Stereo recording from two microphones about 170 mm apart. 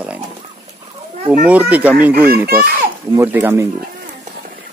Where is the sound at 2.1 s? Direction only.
65° right (ahead or behind).